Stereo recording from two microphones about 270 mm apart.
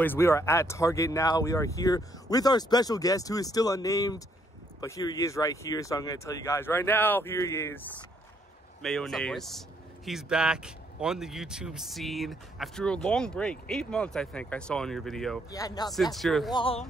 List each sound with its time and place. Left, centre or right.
0.0 s speech: centre
15.5 s speech: centre
15.9 s speech: centre
16.5 s speech: centre